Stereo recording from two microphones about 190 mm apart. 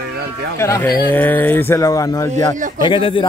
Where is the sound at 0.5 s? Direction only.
15° left (ahead or behind).